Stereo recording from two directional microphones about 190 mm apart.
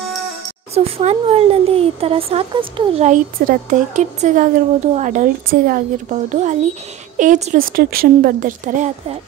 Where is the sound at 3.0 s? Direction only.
40° right (ahead or behind).